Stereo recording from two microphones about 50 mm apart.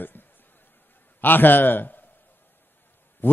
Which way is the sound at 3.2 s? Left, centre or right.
Left.